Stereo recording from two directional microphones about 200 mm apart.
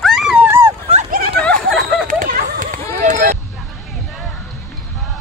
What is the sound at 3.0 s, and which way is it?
Vehicle, 40° right (ahead or behind).